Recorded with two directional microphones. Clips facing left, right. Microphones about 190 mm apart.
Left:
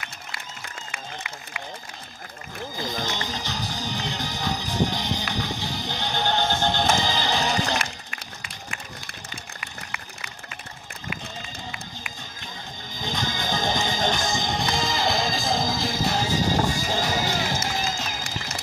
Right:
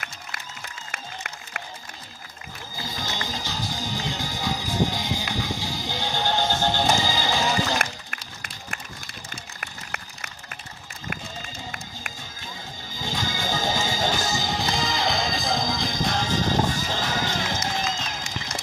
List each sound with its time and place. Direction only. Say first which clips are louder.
0.9 s applause: even; 55° right (ahead or behind)
2.8 s music: left 2 dB; 10° right (ahead or behind)
9.6 s a sound: right 1 dB; 50° right (ahead or behind)
12.9 s music: left 1 dB; 10° right (ahead or behind); by 18.2 s 5° left (ahead or behind)